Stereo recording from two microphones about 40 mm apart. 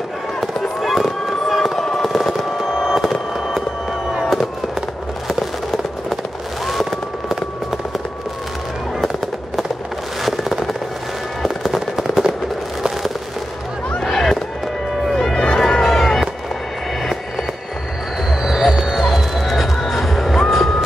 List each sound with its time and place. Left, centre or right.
0.7 s fireworks: centre
6.6 s a sound: centre
10.2 s fireworks: centre
11.7 s fireworks: centre
14.0 s chop: centre
15.0 s music: centre
17.0 s train: centre
18.4 s music: centre
20.3 s vehicle: centre